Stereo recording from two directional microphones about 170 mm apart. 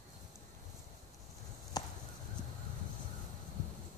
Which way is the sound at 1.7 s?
20° left (ahead or behind).